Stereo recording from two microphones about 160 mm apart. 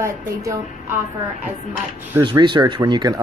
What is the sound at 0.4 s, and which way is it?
Speech, 20° right (ahead or behind).